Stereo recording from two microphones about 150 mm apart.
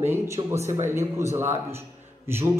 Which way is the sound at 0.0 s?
15° right (ahead or behind).